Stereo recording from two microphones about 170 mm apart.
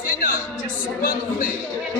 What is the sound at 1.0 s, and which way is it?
Speech, 60° left (ahead or behind).